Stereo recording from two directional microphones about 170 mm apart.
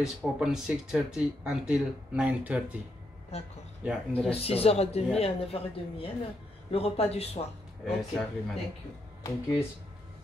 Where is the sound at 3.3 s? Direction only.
40° left (ahead or behind).